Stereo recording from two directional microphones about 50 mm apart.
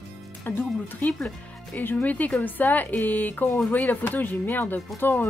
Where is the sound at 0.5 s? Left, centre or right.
Left.